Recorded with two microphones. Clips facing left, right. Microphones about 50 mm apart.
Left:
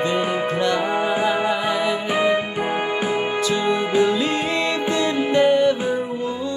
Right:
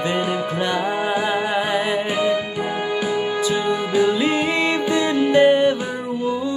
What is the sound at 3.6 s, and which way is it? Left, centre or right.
Music, left.